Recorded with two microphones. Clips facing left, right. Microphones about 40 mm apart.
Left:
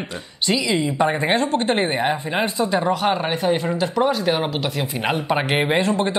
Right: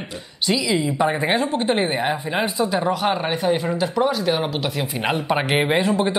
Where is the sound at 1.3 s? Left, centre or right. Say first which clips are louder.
Left 1 dB; centre.